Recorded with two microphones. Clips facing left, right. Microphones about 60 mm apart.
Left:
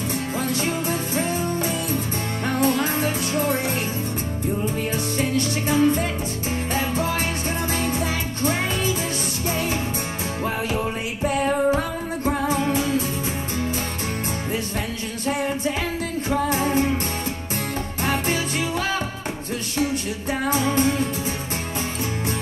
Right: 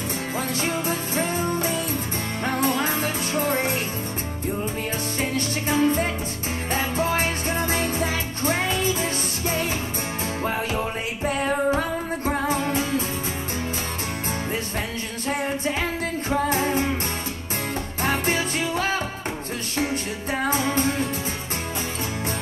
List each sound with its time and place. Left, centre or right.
0.6 s music: right
5.3 s music: right
12.3 s music: right
15.2 s music: right
18.0 s music: right
20.4 s music: right